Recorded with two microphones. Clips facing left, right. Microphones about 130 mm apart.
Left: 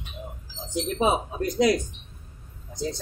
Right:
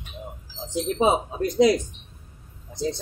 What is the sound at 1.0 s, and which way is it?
Speech, 20° right (ahead or behind).